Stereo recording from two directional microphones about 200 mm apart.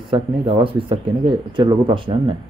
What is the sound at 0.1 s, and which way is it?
Speech, 25° right (ahead or behind).